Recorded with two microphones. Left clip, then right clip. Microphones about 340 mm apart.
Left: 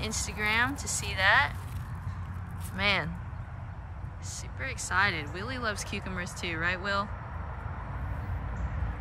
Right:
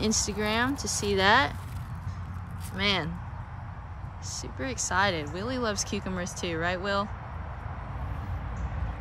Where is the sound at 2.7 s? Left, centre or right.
Centre.